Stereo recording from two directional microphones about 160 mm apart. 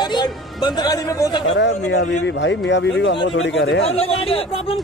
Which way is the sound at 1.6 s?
90° left.